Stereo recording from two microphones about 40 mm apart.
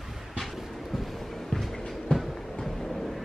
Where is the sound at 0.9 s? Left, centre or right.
Centre.